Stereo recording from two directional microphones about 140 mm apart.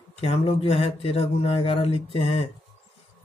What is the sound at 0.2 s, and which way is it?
Speech, 45° left (ahead or behind).